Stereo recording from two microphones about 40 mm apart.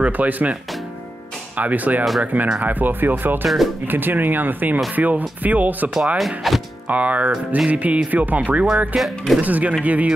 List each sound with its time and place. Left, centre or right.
0.0 s speech: right
1.6 s speech: right
3.4 s speech: centre
3.8 s speech: right
6.1 s speech: centre
6.9 s speech: right
8.6 s speech: centre
9.4 s speech: right